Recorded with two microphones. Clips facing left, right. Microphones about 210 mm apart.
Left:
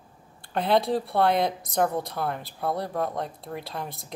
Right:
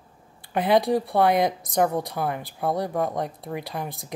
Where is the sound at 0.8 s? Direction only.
Centre (ahead or behind).